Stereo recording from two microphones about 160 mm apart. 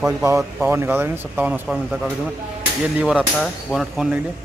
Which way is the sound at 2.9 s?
5° right (ahead or behind).